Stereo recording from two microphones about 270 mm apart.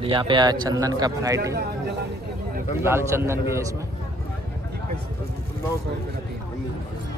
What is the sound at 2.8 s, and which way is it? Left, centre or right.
Speech, centre.